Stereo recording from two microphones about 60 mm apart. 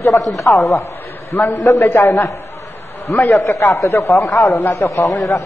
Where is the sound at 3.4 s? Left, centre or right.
Left.